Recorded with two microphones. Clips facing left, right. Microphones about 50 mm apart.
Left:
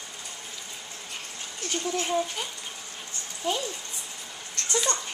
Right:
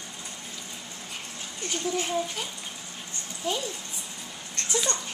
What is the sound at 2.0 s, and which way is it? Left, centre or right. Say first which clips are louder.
Speech: left 2 dB; centre.